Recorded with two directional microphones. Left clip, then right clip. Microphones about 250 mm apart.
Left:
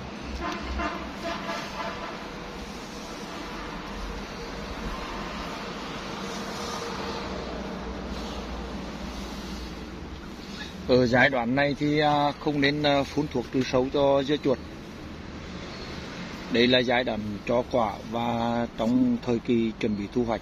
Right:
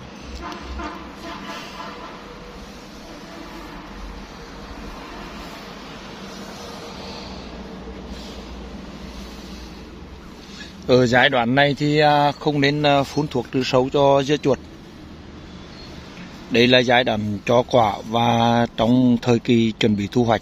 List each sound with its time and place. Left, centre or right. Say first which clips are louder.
10.9 s a man's voice: right 5 dB; right
16.5 s a man's voice: right 7 dB; right